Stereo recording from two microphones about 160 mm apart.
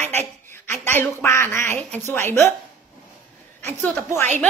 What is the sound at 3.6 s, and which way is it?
Speech, 15° left (ahead or behind).